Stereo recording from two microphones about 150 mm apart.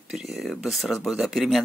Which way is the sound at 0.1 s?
Centre (ahead or behind).